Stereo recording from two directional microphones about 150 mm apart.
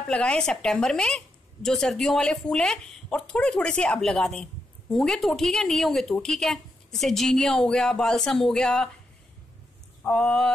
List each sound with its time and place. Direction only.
0.1 s a woman's voice: 5° left (ahead or behind)
10.0 s speech: 10° left (ahead or behind)